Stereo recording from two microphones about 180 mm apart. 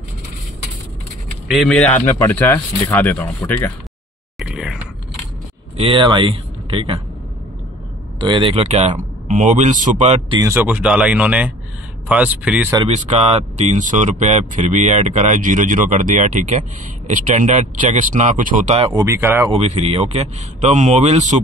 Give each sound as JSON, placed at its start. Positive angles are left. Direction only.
{"t": 1.5, "sound": "speech", "side_deg": 0}
{"t": 4.4, "sound": "a sound", "side_deg": -5}
{"t": 5.8, "sound": "speech", "side_deg": -30}
{"t": 8.2, "sound": "speech", "side_deg": -25}
{"t": 10.4, "sound": "speech", "side_deg": -10}
{"t": 12.8, "sound": "speech", "side_deg": -35}
{"t": 18.9, "sound": "speech", "side_deg": -15}
{"t": 19.5, "sound": "speech", "side_deg": -35}